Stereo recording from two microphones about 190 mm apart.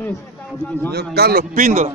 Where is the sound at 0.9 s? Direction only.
55° right (ahead or behind).